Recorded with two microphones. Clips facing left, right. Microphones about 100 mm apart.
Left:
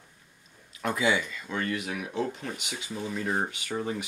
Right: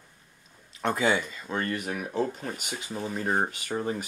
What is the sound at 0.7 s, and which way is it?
Speech, 35° right (ahead or behind).